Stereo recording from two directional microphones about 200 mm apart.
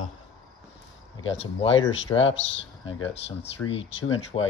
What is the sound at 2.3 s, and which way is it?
Speech, 70° left (ahead or behind).